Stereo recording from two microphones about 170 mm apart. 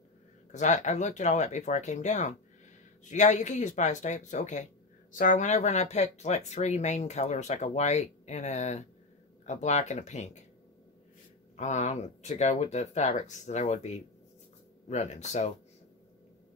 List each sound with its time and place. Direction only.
0.5 s speech: 45° left (ahead or behind)
11.5 s speech: 45° left (ahead or behind)